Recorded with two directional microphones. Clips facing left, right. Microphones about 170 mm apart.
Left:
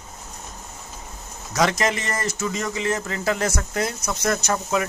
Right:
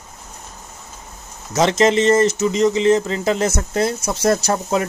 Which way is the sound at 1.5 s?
25° right (ahead or behind).